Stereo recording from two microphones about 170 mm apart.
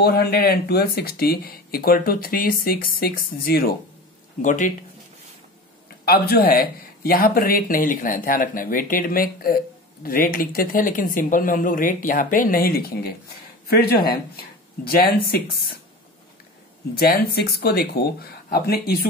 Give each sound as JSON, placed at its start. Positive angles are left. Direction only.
{"t": 0.0, "sound": "speech", "side_deg": 65}
{"t": 4.4, "sound": "speech", "side_deg": 50}
{"t": 6.0, "sound": "speech", "side_deg": 65}
{"t": 16.9, "sound": "speech", "side_deg": 65}